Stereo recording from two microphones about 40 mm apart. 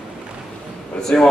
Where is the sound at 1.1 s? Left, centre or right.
Left.